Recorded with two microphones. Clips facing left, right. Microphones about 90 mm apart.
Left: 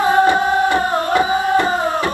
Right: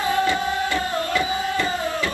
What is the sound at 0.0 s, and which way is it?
Music, 25° left (ahead or behind).